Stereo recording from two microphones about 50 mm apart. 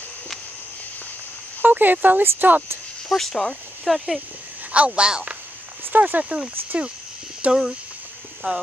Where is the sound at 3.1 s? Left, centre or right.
Centre.